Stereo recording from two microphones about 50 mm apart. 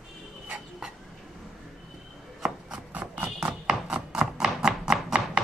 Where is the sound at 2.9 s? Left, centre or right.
Right.